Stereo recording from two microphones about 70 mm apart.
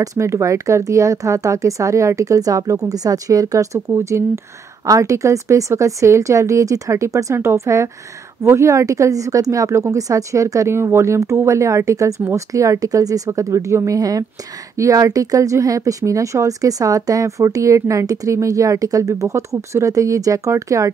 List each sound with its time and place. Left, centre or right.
0.0 s speech: right